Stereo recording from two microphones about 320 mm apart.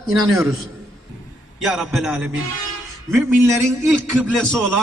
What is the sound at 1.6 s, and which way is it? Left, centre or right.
Speech, centre.